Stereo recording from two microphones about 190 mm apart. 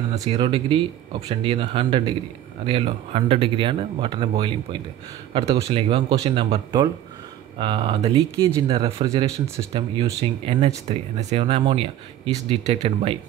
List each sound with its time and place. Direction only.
0.1 s speech: 35° right (ahead or behind)
9.0 s speech: 20° right (ahead or behind)